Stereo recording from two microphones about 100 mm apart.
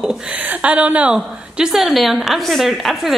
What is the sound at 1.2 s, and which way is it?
A woman's voice, 5° right (ahead or behind).